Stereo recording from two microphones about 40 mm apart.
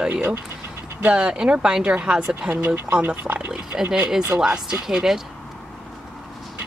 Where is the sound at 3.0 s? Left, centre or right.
Right.